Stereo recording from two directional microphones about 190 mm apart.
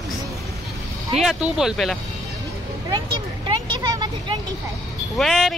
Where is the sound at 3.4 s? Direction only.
25° right (ahead or behind).